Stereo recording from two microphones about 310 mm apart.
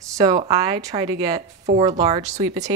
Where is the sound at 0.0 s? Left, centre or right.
Centre.